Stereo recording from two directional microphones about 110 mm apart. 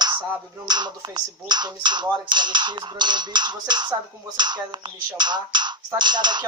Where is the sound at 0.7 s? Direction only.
40° right (ahead or behind).